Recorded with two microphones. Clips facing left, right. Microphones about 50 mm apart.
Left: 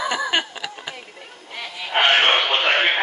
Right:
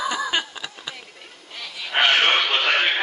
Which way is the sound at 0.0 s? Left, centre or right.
Left.